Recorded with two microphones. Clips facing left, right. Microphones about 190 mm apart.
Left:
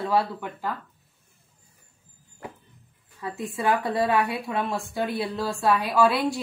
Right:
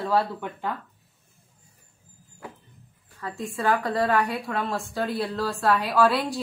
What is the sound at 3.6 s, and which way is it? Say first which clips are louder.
A woman's voice: even; 15° left (ahead or behind).